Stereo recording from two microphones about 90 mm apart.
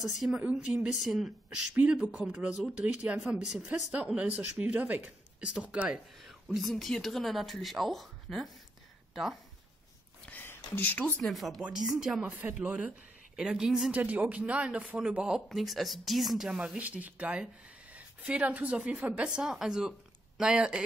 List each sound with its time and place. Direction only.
0.0 s speech: centre (ahead or behind)
0.4 s speech: 10° right (ahead or behind)
1.8 s speech: 15° right (ahead or behind)
10.2 s speech: 20° left (ahead or behind)
11.2 s speech: centre (ahead or behind)
12.3 s speech: 20° right (ahead or behind)
13.9 s speech: 15° right (ahead or behind)